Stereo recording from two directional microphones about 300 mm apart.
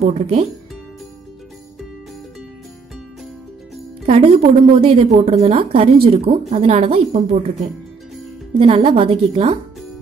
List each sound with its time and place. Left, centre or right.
0.0 s a woman's voice: centre
4.0 s a woman's voice: centre
8.5 s a woman's voice: centre